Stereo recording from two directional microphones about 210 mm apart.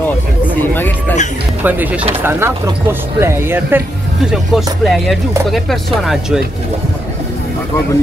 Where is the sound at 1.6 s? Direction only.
10° right (ahead or behind).